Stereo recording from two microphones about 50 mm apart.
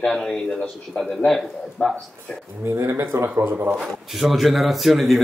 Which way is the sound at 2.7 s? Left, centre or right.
Right.